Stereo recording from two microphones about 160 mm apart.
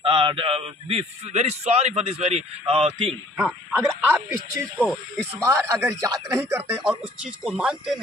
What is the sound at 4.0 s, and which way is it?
Speech, 15° right (ahead or behind).